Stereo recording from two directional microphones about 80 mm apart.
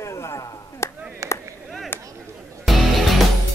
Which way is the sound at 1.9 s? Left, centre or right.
Left.